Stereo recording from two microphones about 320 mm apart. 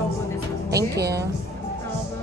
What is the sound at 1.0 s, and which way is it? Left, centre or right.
Speech, right.